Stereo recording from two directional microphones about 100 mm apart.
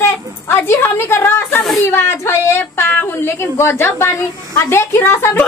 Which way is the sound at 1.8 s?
25° left (ahead or behind).